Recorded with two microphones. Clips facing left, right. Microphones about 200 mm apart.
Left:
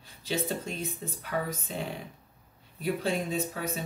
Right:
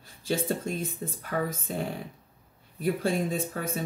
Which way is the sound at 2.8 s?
50° right (ahead or behind).